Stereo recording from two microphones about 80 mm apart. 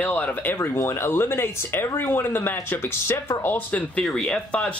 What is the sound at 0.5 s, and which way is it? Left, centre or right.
Speech, left.